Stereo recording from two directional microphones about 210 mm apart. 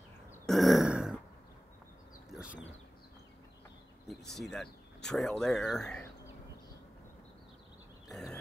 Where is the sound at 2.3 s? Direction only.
5° right (ahead or behind).